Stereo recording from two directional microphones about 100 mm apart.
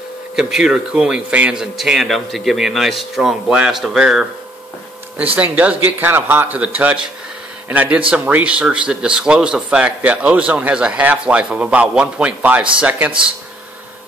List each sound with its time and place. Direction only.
0.4 s speech: 5° right (ahead or behind)
5.1 s speech: 15° right (ahead or behind)